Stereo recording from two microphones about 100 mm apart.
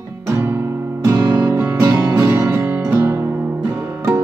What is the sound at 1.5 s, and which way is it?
Music, 20° right (ahead or behind).